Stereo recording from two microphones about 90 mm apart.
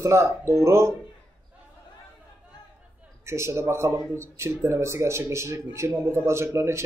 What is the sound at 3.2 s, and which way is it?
Speech, 30° right (ahead or behind).